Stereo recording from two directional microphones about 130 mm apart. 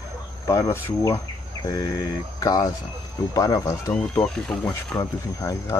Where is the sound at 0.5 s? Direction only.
25° left (ahead or behind).